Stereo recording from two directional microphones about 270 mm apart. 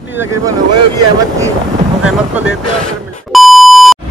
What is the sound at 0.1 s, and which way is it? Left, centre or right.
Speech, centre.